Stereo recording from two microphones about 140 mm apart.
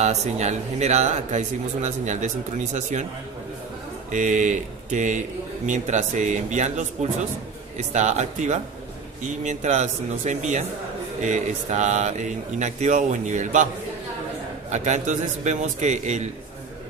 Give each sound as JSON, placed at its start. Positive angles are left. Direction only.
{"t": 0.0, "sound": "speech", "side_deg": -55}
{"t": 4.1, "sound": "speech", "side_deg": -60}
{"t": 14.7, "sound": "speech", "side_deg": -55}